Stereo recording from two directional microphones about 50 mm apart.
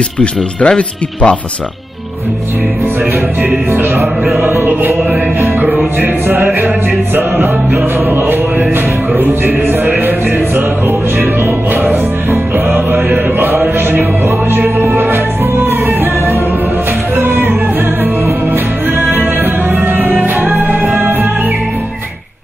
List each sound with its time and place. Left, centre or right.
0.2 s speech: left
3.4 s music: right
5.4 s music: right
11.7 s music: right
12.3 s music: right
17.2 s music: right
18.9 s music: right
19.7 s music: right